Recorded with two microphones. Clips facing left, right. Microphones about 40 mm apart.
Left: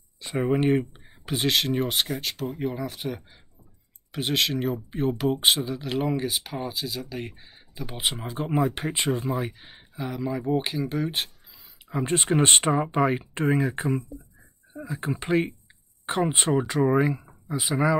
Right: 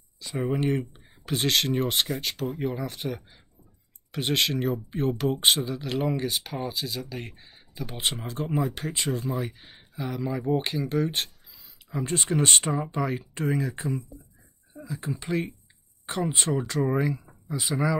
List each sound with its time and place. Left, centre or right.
0.4 s speech: left; by 8.4 s centre
8.4 s speech: left
9.3 s speech: centre
11.5 s a sound: centre
12.1 s speech: left